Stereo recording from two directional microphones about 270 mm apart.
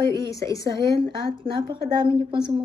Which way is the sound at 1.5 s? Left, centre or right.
Centre.